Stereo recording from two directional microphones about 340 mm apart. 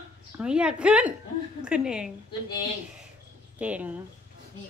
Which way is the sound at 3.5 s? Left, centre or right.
Centre.